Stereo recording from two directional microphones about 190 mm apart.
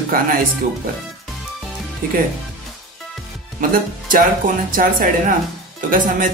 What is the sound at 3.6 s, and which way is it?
Speech, 45° right (ahead or behind).